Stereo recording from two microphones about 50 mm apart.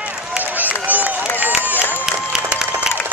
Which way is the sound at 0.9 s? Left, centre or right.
Right.